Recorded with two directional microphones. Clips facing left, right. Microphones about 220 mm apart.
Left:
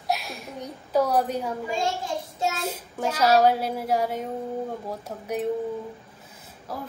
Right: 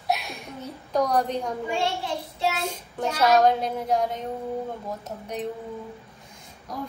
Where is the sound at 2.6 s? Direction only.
5° left (ahead or behind).